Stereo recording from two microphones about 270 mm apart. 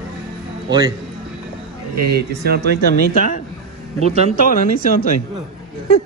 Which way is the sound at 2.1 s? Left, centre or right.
Right.